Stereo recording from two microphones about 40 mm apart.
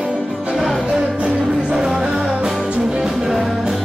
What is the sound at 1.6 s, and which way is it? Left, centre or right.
Music, centre.